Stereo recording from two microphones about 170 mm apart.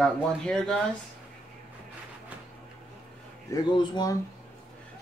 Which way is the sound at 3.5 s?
25° left (ahead or behind).